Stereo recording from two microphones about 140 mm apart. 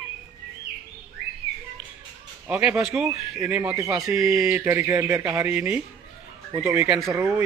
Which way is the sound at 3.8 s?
25° right (ahead or behind).